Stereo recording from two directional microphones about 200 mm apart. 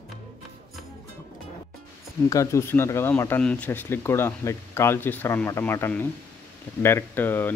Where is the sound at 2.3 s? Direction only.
15° left (ahead or behind).